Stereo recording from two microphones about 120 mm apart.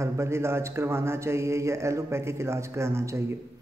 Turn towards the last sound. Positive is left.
turn(degrees=-25)  # may be behind; listen again after turning